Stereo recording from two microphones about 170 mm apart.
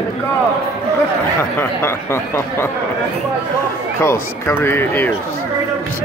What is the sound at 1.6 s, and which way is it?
Speech, 15° left (ahead or behind).